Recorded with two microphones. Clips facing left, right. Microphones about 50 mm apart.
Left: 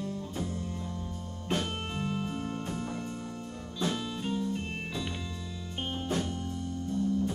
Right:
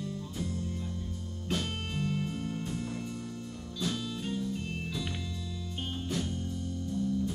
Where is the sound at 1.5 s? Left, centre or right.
Left.